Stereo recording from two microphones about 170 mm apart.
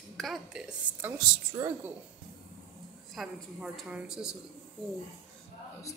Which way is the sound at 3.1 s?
Centre (ahead or behind).